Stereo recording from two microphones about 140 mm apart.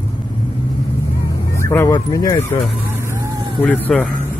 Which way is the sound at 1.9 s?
30° left (ahead or behind).